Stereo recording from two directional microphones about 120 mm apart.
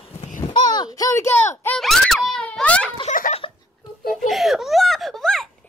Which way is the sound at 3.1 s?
90° left.